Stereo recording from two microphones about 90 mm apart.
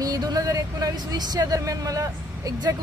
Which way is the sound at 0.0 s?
45° right (ahead or behind).